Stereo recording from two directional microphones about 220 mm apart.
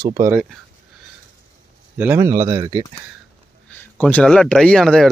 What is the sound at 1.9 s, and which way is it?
Speech, 10° right (ahead or behind).